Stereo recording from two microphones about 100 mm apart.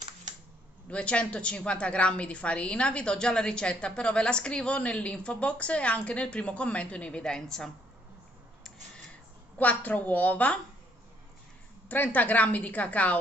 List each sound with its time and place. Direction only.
0.8 s a woman's voice: 10° left (ahead or behind)
9.6 s a woman's voice: 15° left (ahead or behind)
11.9 s a woman's voice: 15° left (ahead or behind)